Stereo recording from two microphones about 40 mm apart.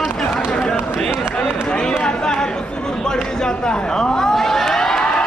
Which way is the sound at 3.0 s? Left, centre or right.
Centre.